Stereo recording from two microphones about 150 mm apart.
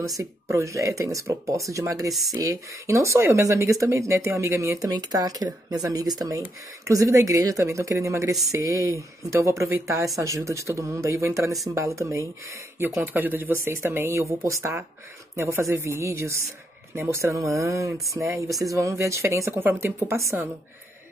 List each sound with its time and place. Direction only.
0.2 s speech: 20° right (ahead or behind)